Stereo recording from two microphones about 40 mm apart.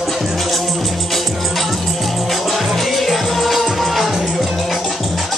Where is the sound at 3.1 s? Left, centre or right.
Centre.